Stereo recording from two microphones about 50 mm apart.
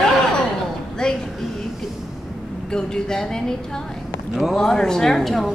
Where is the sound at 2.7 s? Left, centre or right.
Centre.